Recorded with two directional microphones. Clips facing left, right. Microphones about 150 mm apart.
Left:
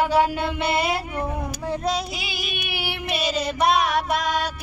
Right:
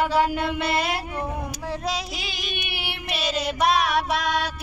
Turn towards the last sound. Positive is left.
turn(degrees=0)  # may be behind; listen again after turning